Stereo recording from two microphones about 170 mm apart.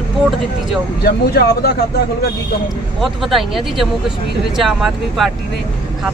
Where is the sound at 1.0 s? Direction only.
65° left (ahead or behind).